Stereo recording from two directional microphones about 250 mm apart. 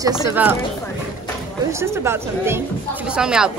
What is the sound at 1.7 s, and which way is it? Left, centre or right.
A woman's voice, centre.